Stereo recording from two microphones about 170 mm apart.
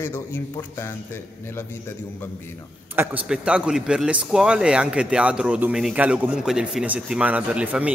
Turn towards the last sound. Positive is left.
turn(degrees=-10)  # may be behind; listen again after turning